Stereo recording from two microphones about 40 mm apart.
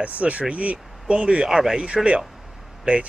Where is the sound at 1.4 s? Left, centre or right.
Centre.